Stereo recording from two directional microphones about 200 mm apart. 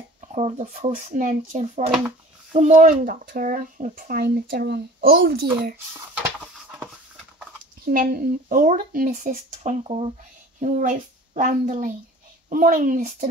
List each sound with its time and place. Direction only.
0.3 s speech: 35° right (ahead or behind); by 5.5 s 50° right (ahead or behind)
5.9 s a sound: 10° right (ahead or behind)
7.8 s speech: 45° right (ahead or behind)
10.6 s a child's voice: 40° right (ahead or behind)